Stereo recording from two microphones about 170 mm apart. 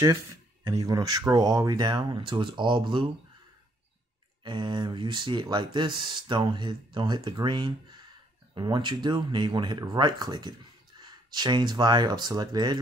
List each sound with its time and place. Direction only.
0.8 s speech: 20° right (ahead or behind)
4.4 s speech: 25° right (ahead or behind)